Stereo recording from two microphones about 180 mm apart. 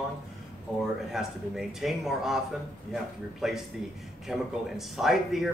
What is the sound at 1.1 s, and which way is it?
Speech, centre (ahead or behind).